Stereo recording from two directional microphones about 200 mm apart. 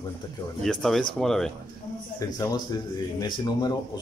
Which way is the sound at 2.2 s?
15° left (ahead or behind).